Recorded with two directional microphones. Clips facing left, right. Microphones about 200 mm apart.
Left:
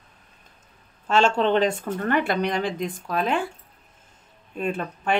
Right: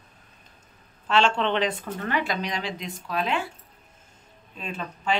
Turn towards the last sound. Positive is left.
turn(degrees=55)  # may be behind; listen again after turning